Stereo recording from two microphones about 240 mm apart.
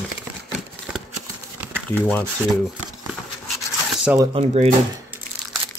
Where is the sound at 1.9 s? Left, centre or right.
Centre.